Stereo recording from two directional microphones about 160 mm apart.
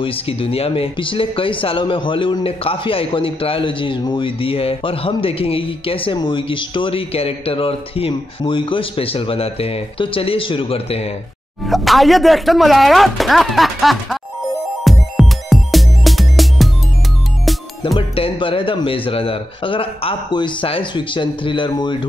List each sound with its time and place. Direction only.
0.0 s speech: 35° left (ahead or behind)
11.6 s speech: centre (ahead or behind)
14.9 s music: centre (ahead or behind)
17.9 s speech: 35° left (ahead or behind)